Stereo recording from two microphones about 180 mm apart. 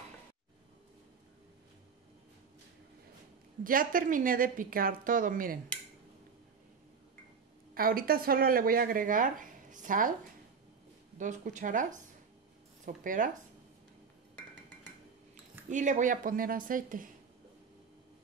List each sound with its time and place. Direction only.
3.6 s speech: 50° right (ahead or behind)
7.7 s speech: 55° right (ahead or behind)
11.1 s speech: 45° right (ahead or behind)
15.7 s speech: 45° right (ahead or behind)